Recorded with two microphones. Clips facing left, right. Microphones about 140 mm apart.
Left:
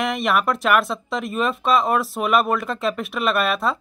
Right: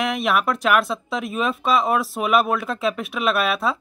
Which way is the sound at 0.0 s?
Centre (ahead or behind).